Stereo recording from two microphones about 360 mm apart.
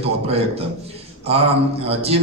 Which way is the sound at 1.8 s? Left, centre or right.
Centre.